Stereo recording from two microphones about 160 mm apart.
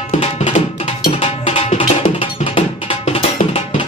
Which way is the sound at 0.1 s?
45° left (ahead or behind).